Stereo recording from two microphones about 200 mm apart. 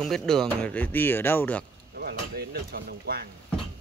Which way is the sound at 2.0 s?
50° right (ahead or behind).